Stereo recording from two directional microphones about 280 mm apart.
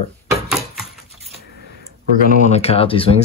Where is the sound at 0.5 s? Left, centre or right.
Centre.